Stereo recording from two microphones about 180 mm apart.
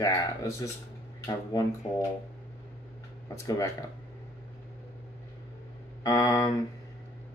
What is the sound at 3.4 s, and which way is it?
Speech, 20° left (ahead or behind).